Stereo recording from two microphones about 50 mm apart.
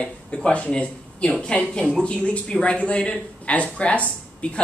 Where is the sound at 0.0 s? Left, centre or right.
Left.